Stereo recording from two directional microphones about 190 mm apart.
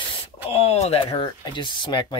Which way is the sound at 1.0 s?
20° left (ahead or behind).